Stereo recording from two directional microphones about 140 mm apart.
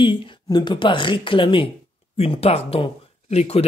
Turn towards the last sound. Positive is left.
turn(degrees=45)  # may be behind; listen again after turning